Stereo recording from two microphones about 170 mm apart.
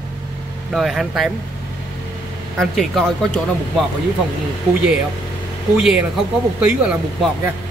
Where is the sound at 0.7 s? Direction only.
Centre (ahead or behind).